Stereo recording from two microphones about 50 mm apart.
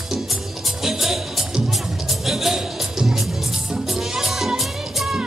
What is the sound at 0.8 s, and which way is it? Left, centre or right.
Music, centre.